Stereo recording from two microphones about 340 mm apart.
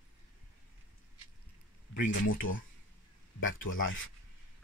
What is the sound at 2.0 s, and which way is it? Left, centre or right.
Speech, left.